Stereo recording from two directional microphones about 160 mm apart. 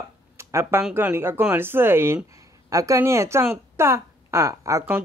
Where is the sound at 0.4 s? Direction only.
15° right (ahead or behind).